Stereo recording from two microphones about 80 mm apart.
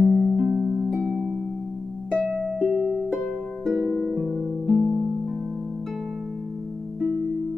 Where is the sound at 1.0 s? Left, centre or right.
Centre.